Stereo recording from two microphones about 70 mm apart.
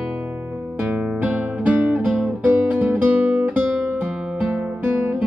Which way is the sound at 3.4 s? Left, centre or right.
Right.